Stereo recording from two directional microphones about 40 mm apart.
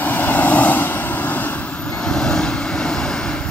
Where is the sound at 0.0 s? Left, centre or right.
Left.